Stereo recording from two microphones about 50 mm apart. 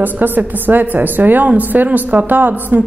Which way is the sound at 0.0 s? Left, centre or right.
Right.